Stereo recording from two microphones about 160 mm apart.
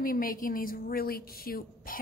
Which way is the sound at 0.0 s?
60° left (ahead or behind).